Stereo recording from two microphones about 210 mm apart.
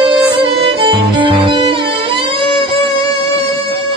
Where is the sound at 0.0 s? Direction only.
25° right (ahead or behind).